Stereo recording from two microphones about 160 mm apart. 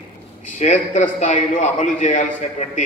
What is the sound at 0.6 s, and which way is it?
A man's voice, 50° left (ahead or behind).